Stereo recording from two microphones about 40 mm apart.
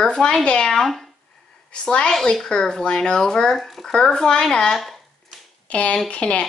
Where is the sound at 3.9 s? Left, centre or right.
Centre.